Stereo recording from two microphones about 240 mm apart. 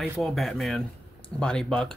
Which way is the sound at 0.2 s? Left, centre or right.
Centre.